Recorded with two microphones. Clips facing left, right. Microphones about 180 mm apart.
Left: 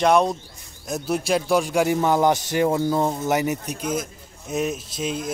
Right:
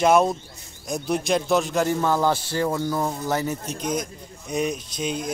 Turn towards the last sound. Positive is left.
turn(degrees=0)  # may be behind; listen again after turning